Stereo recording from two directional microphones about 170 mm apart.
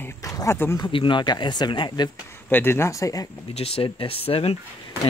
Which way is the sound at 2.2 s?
15° left (ahead or behind).